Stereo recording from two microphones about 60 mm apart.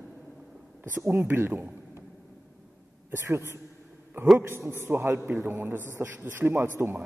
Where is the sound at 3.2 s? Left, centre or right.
Right.